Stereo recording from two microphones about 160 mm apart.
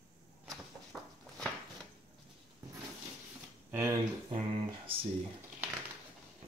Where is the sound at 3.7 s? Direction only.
15° right (ahead or behind).